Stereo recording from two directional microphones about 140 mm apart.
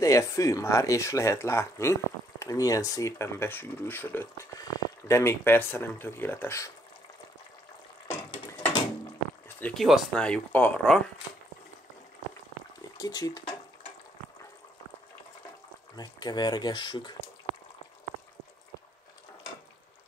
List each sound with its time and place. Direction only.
0.0 s speech: 25° left (ahead or behind)
9.6 s speech: 10° left (ahead or behind)
12.9 s speech: 25° left (ahead or behind)
16.0 s speech: 30° left (ahead or behind)